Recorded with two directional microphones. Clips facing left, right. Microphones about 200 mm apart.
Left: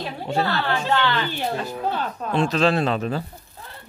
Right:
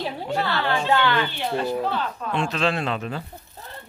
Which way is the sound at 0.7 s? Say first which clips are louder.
Right 1 dB; 15° right (ahead or behind).